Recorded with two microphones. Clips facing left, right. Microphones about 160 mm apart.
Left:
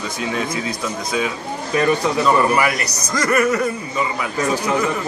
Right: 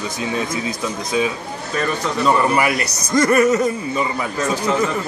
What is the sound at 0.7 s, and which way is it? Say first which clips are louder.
Speech: right 1 dB; 25° right (ahead or behind).